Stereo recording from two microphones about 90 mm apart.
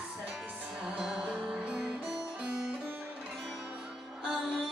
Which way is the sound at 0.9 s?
5° right (ahead or behind).